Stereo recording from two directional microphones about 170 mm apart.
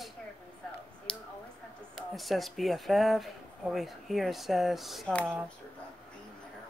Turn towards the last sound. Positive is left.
turn(degrees=5)  # may be behind; listen again after turning